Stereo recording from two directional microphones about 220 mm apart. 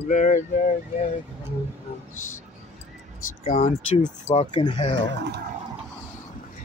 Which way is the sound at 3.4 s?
40° left (ahead or behind).